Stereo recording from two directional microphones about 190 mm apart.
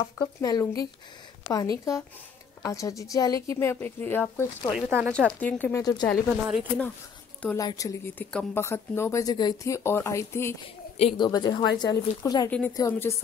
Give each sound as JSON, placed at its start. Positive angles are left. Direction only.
{"t": 0.2, "sound": "a woman's voice", "side_deg": 20}
{"t": 4.7, "sound": "speech", "side_deg": 0}
{"t": 7.5, "sound": "speech", "side_deg": 20}
{"t": 11.0, "sound": "a woman's voice", "side_deg": 30}
{"t": 12.4, "sound": "speech", "side_deg": 5}
{"t": 12.7, "sound": "speech", "side_deg": 15}